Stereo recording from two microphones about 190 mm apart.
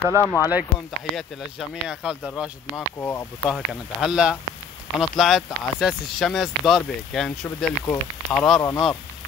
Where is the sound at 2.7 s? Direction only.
10° left (ahead or behind).